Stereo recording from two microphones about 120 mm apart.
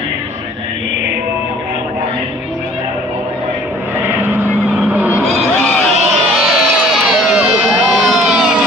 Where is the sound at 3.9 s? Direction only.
15° right (ahead or behind).